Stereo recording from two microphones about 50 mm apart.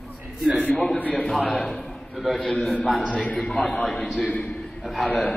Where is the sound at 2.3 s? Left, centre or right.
Centre.